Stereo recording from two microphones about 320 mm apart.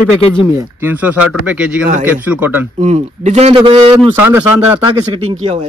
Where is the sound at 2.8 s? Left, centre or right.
Right.